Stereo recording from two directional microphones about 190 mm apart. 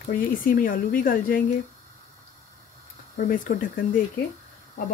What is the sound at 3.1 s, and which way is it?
Speech, 45° left (ahead or behind).